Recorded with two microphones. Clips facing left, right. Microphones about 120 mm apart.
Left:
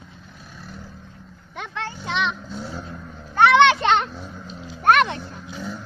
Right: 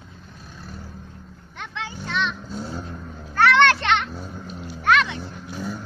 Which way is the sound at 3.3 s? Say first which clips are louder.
Left 3 dB; 20° left (ahead or behind).